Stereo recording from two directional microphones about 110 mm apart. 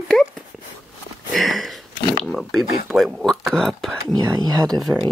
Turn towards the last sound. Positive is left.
turn(degrees=0)  # may be behind; listen again after turning